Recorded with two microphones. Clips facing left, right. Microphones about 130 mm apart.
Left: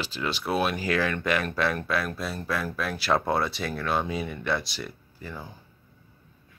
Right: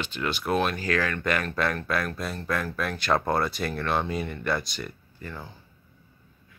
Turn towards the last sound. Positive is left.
turn(degrees=10)  # may be behind; listen again after turning